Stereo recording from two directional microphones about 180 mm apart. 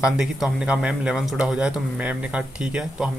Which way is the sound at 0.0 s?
5° right (ahead or behind).